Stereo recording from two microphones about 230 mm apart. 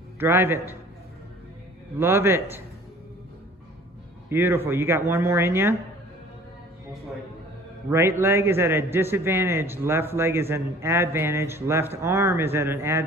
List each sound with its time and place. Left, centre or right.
0.2 s a man's voice: centre
2.0 s a man's voice: centre
4.3 s a man's voice: centre
7.9 s a man's voice: centre